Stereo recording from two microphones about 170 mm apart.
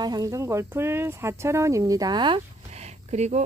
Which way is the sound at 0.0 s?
20° right (ahead or behind).